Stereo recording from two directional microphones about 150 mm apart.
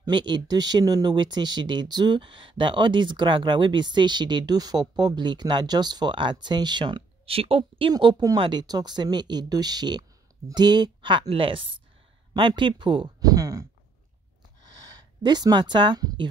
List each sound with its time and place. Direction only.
0.0 s speech: 30° right (ahead or behind)
7.9 s speech: 30° right (ahead or behind)
14.7 s speech: 25° right (ahead or behind)